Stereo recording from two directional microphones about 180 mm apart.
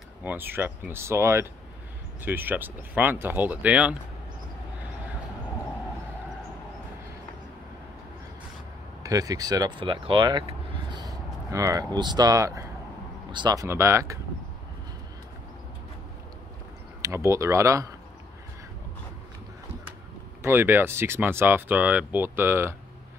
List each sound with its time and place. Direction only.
0.2 s speech: 10° right (ahead or behind)
9.0 s speech: 20° right (ahead or behind)
17.0 s speech: 15° right (ahead or behind)
20.4 s speech: 10° right (ahead or behind)